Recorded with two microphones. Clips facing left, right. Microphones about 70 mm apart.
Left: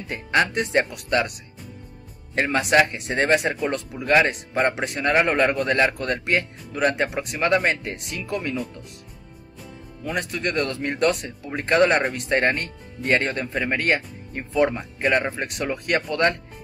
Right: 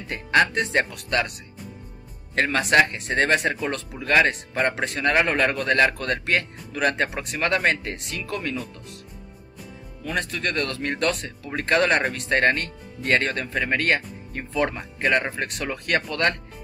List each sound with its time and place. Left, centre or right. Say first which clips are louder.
0.1 s speech: right 1 dB; centre
2.3 s speech: even; centre
10.0 s speech: left 1 dB; centre